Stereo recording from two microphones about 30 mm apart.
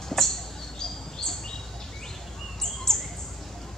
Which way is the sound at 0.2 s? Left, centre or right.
Centre.